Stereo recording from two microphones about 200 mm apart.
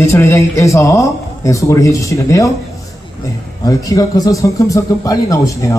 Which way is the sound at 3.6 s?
15° left (ahead or behind).